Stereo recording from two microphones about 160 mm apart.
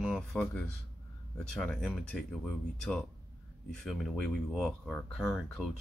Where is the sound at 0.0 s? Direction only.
Centre (ahead or behind).